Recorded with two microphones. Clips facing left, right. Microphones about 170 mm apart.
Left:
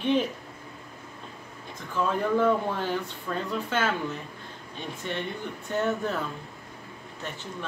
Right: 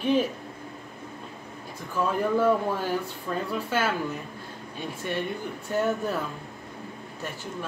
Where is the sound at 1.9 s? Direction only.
10° right (ahead or behind).